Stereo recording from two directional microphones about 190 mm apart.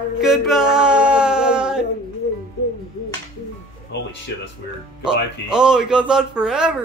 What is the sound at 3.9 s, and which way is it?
Speech, 60° left (ahead or behind).